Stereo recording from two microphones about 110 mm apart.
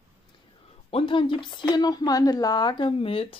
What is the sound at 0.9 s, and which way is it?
A woman's voice, 55° left (ahead or behind).